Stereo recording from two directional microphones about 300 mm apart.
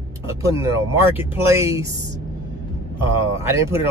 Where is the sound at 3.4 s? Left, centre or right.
Centre.